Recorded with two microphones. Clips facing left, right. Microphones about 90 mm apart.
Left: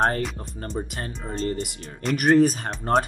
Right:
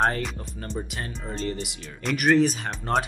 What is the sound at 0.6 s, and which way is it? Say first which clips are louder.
Speech: left 2 dB; 40° left (ahead or behind).